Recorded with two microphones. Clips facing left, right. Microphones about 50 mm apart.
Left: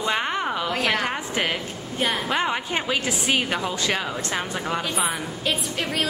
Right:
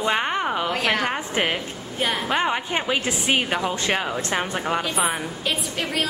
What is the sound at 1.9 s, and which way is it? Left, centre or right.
A woman's voice, centre.